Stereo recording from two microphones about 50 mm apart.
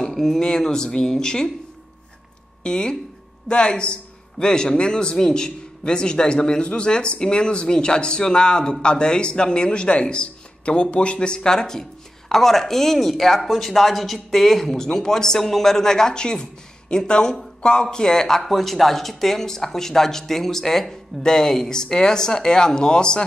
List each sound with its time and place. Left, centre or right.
0.0 s a sound: centre
0.4 s speech: centre
2.6 s a man's voice: centre